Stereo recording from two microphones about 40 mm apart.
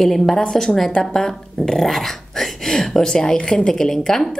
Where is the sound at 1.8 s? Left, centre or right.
Centre.